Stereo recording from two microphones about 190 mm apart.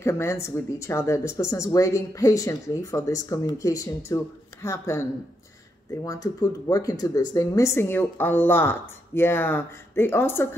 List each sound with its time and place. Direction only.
0.0 s speech: 15° left (ahead or behind)